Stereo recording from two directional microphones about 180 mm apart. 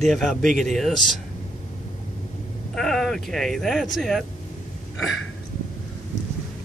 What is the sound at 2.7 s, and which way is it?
Speech, centre (ahead or behind).